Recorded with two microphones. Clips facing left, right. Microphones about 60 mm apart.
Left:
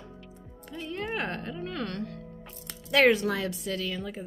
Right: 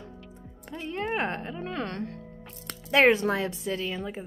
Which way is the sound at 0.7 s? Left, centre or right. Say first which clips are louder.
Right 3 dB; right.